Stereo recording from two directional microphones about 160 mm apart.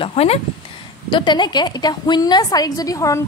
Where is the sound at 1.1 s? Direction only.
30° left (ahead or behind).